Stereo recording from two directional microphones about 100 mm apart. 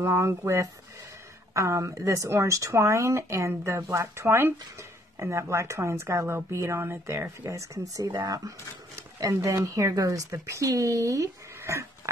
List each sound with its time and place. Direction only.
0.0 s speech: 30° right (ahead or behind)
1.5 s speech: 30° right (ahead or behind)